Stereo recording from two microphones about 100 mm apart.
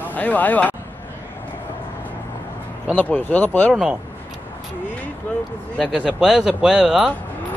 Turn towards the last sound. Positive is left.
turn(degrees=-5)  # may be behind; listen again after turning